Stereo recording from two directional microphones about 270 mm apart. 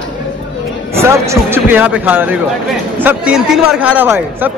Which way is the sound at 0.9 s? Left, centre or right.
Centre.